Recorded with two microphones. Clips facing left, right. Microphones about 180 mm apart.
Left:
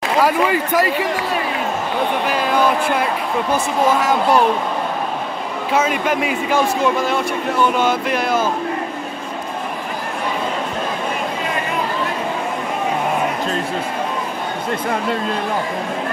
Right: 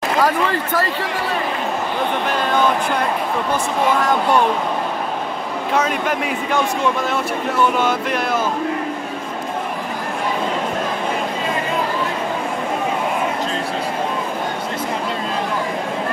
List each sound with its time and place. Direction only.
0.2 s speech: 10° left (ahead or behind)
2.2 s speech: 10° left (ahead or behind)
5.7 s speech: 5° left (ahead or behind)
7.7 s speech: centre (ahead or behind)